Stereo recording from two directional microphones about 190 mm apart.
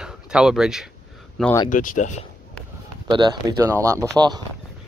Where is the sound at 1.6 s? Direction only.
45° left (ahead or behind).